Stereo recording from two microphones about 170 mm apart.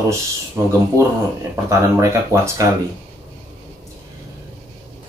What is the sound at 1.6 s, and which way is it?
Speech, 15° right (ahead or behind).